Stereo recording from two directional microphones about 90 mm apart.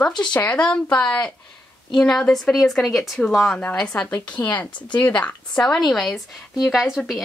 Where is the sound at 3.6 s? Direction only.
15° left (ahead or behind).